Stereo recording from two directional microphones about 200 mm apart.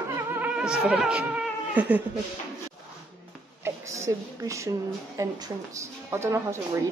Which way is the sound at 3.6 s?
15° right (ahead or behind).